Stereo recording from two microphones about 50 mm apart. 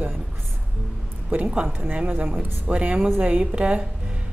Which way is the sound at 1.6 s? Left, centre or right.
Right.